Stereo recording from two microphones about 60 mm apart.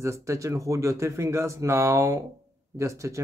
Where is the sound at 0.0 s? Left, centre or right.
Right.